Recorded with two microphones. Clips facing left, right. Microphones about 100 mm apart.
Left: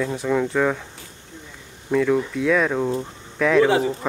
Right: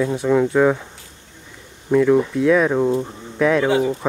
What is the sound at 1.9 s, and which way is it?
Speech, 10° right (ahead or behind).